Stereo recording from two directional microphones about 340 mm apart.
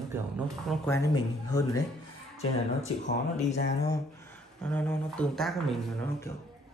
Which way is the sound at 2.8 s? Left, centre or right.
Centre.